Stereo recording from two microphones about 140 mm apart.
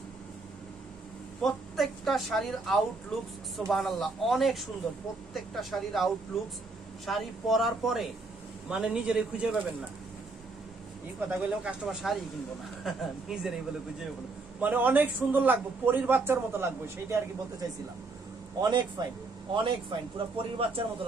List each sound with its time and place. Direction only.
1.4 s speech: centre (ahead or behind)
7.1 s speech: centre (ahead or behind)
11.1 s speech: 10° right (ahead or behind)
14.6 s a man's voice: 10° right (ahead or behind)
18.6 s a man's voice: 30° right (ahead or behind)